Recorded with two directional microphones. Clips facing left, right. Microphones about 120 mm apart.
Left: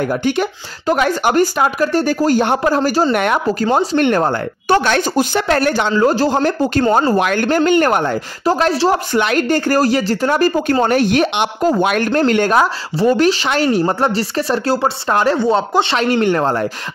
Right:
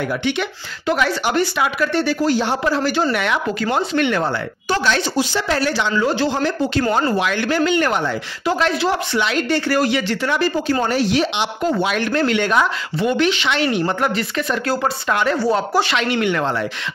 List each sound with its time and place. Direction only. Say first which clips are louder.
0.0 s speech: left 4 dB; 40° left (ahead or behind)
15.3 s speech: left 3 dB; 20° left (ahead or behind)
16.0 s speech: left 5 dB; 40° left (ahead or behind)